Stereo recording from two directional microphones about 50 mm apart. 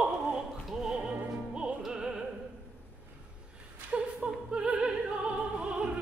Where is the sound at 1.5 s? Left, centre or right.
Centre.